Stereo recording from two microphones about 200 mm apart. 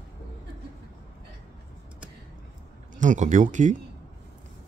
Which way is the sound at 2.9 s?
40° right (ahead or behind).